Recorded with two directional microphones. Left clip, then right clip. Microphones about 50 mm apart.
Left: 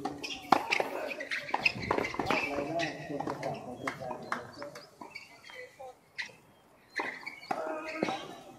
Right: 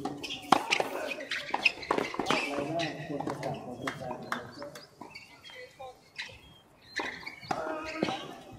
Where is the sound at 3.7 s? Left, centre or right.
Right.